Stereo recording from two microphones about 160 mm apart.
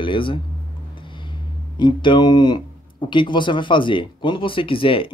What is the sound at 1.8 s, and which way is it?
Speech, 30° left (ahead or behind).